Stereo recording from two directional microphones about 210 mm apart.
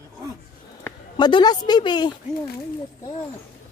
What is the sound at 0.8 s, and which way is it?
Speech, 20° left (ahead or behind).